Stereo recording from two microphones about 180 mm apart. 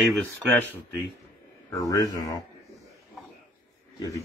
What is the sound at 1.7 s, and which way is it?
Speech, 20° left (ahead or behind).